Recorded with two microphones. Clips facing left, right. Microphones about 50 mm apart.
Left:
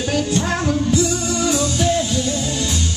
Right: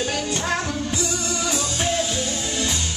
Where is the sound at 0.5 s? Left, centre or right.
Centre.